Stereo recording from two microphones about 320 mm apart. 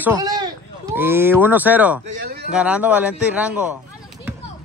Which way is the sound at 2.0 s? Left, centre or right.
Right.